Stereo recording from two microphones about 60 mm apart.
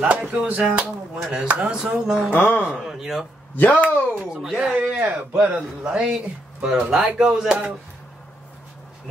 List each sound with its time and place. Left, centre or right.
0.3 s a man's voice: right
2.3 s speech: left
2.7 s a man's voice: centre
3.5 s speech: left
4.3 s a man's voice: centre
4.6 s a man's voice: right